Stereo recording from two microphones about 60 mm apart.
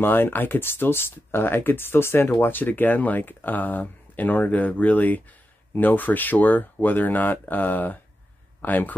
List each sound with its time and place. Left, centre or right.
0.0 s speech: left